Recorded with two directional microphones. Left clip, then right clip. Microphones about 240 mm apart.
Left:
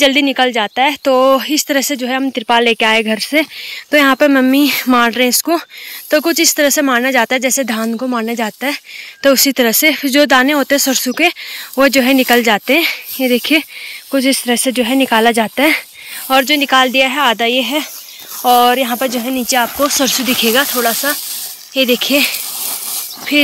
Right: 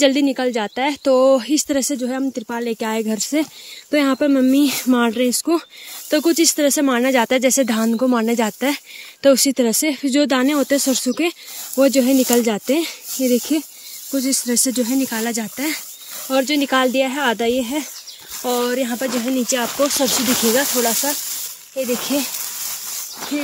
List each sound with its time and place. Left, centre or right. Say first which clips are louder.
0.0 s speech: left 5 dB; centre
14.8 s speech: left 9 dB; centre
16.3 s speech: left 7 dB; centre